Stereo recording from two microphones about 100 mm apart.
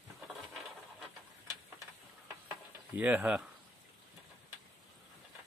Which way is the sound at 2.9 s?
15° right (ahead or behind).